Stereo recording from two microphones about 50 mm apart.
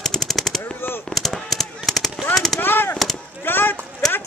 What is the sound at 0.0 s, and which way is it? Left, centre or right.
Machine gun, centre.